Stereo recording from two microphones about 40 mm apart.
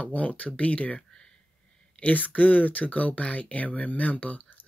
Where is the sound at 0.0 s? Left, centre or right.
Left.